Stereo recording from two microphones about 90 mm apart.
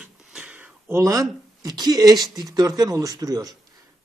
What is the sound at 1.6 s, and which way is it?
Speech, 50° right (ahead or behind).